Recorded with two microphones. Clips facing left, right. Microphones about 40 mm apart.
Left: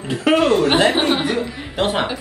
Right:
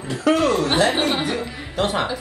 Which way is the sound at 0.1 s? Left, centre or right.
Left.